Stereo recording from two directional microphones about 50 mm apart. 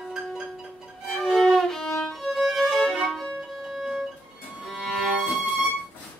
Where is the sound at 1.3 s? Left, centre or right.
Centre.